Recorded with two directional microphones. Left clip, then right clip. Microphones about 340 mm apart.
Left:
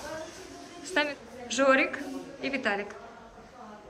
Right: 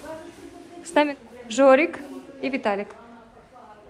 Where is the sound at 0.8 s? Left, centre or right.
Centre.